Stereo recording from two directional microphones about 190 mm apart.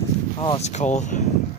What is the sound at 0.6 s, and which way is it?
Speech, 40° left (ahead or behind).